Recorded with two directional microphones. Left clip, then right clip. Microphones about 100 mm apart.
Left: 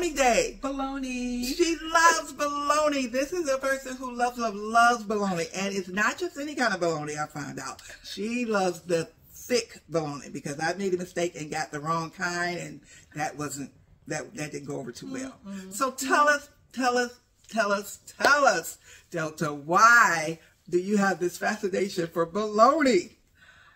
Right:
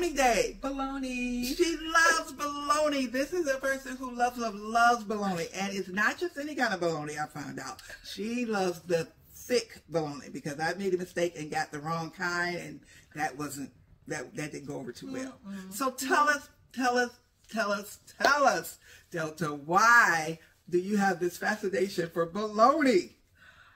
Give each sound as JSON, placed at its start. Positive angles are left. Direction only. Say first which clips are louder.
{"t": 0.0, "sound": "a woman's voice", "louder": "left 3 dB", "side_deg": 35}
{"t": 0.6, "sound": "speech", "louder": "left 3 dB", "side_deg": -15}
{"t": 1.5, "sound": "speech", "louder": "left 3 dB", "side_deg": 40}